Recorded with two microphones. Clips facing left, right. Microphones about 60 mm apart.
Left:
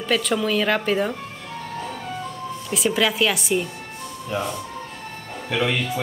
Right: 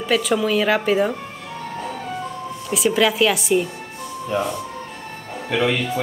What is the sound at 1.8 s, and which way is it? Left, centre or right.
Music, centre.